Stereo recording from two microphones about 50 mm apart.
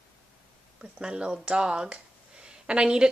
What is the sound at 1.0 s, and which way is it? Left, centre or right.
Speech, centre.